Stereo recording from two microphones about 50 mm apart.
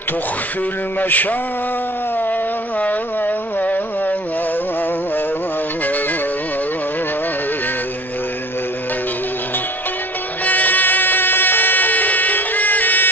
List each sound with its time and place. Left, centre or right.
0.9 s mantra: left
2.1 s a sound: left
5.9 s music: left
10.4 s music: left